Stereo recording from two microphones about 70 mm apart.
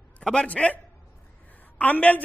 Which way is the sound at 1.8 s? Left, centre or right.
Left.